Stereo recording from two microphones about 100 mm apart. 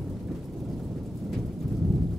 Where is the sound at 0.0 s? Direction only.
5° right (ahead or behind).